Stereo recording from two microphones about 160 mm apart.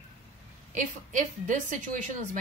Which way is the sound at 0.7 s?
50° right (ahead or behind).